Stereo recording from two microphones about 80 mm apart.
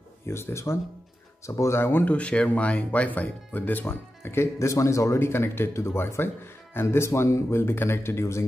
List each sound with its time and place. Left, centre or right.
0.3 s speech: left